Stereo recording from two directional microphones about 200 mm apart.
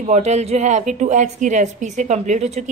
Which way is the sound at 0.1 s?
35° right (ahead or behind).